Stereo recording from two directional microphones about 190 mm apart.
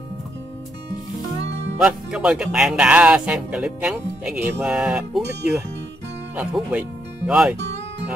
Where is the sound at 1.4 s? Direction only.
65° right (ahead or behind).